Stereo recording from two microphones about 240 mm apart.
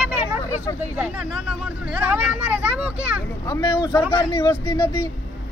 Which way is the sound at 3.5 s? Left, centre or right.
Centre.